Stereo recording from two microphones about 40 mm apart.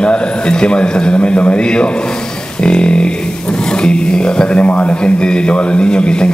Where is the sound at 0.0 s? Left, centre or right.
Left.